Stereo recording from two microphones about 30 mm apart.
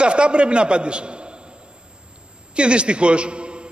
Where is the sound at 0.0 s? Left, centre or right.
Right.